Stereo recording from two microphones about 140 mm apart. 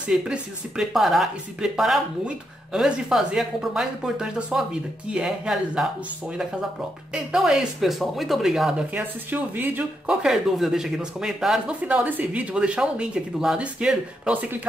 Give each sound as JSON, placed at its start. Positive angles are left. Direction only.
{"t": 0.0, "sound": "speech", "side_deg": -5}
{"t": 7.1, "sound": "speech", "side_deg": -5}